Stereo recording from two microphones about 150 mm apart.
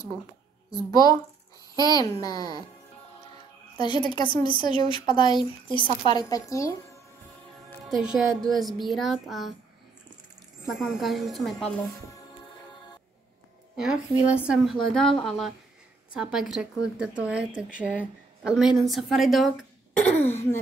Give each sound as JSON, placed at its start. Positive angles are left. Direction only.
{"t": 0.7, "sound": "a woman's voice", "side_deg": 25}
{"t": 3.7, "sound": "a woman's voice", "side_deg": 30}
{"t": 7.9, "sound": "a woman's voice", "side_deg": -5}
{"t": 10.7, "sound": "a woman's voice", "side_deg": 0}
{"t": 13.7, "sound": "a woman's voice", "side_deg": -5}
{"t": 15.0, "sound": "a woman's voice", "side_deg": 5}
{"t": 20.2, "sound": "throat clearing", "side_deg": 15}